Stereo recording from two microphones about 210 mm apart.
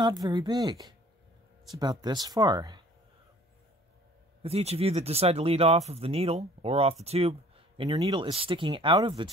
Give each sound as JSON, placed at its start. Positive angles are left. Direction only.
{"t": 0.0, "sound": "speech", "side_deg": -20}
{"t": 4.4, "sound": "speech", "side_deg": -30}